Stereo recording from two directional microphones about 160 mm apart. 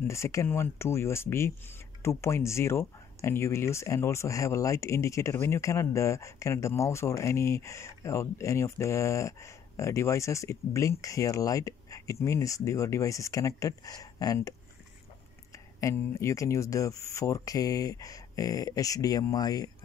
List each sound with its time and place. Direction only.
0.1 s speech: 15° left (ahead or behind)
15.5 s speech: 20° left (ahead or behind)